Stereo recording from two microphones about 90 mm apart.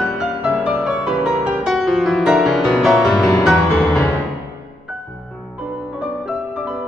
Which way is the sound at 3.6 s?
20° left (ahead or behind).